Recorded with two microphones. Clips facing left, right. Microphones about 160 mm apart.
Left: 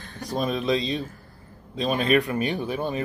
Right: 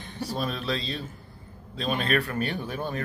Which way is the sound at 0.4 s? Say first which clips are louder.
Left 7 dB; 10° left (ahead or behind).